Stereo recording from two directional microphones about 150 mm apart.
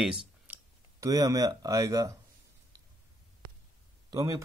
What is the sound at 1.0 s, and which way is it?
Speech, 25° right (ahead or behind).